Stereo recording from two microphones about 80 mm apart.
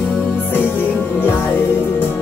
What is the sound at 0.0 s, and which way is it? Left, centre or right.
Music, left.